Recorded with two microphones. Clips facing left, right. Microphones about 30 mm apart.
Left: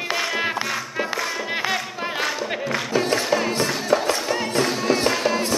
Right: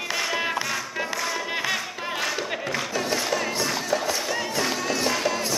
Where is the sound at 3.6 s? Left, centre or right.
Left.